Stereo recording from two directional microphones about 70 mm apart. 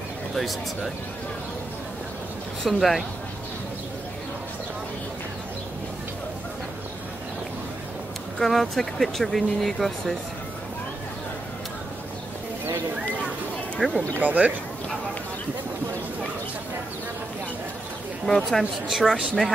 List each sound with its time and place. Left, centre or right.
0.3 s speech: centre
2.6 s speech: centre
8.4 s speech: centre
13.7 s speech: centre
14.2 s speech: right
18.2 s speech: centre
18.9 s speech: centre